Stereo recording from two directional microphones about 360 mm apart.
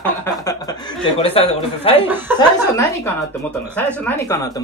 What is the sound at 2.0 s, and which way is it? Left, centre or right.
Speech, centre.